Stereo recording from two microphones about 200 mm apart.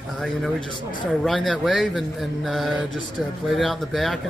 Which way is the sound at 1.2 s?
Centre (ahead or behind).